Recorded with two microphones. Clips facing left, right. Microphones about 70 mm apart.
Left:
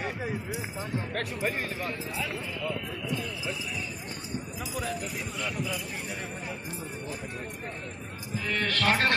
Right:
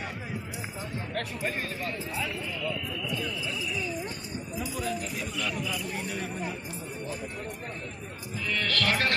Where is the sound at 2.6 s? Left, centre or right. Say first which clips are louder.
Right 1 dB; left.